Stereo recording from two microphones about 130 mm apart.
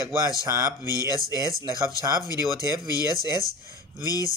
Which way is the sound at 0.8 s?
30° left (ahead or behind).